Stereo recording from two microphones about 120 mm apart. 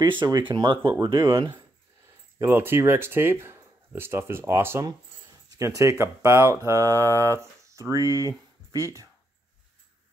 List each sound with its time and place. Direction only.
0.0 s speech: 40° right (ahead or behind)
1.0 s speech: 25° right (ahead or behind)
2.4 s speech: 20° right (ahead or behind)